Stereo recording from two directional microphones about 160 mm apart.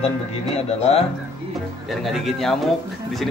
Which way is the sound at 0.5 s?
40° left (ahead or behind).